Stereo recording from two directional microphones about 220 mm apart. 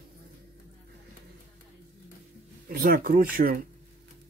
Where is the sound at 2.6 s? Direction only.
40° right (ahead or behind).